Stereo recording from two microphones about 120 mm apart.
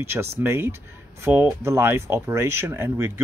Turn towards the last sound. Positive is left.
turn(degrees=-25)  # may be behind; listen again after turning